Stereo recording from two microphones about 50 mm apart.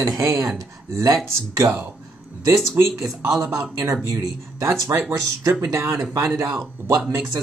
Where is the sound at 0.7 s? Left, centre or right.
Right.